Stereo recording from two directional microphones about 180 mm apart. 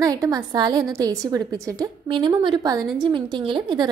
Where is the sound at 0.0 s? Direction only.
20° right (ahead or behind).